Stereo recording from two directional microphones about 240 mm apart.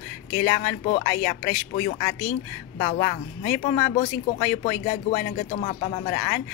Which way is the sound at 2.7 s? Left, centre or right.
Left.